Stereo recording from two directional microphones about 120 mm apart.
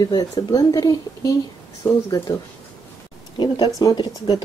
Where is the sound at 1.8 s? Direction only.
20° left (ahead or behind).